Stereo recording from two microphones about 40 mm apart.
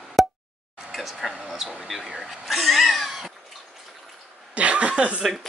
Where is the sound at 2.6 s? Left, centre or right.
Centre.